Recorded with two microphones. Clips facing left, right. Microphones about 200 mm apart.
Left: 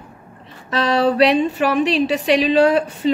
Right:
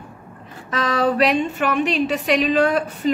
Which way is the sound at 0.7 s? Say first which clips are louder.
Left 3 dB; 30° left (ahead or behind).